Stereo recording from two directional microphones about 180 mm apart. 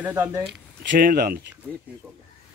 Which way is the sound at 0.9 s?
55° right (ahead or behind).